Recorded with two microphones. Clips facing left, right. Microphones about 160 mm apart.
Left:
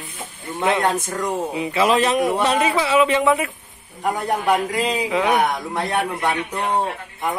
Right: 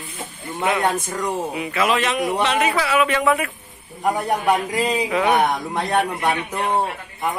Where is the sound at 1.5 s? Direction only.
30° left (ahead or behind).